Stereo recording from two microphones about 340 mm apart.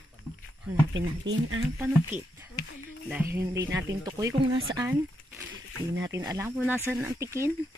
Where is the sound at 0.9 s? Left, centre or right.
Right.